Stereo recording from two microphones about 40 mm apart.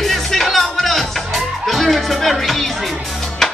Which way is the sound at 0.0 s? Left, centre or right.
Centre.